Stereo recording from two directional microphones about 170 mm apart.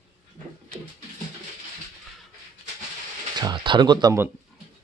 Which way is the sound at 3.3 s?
25° right (ahead or behind).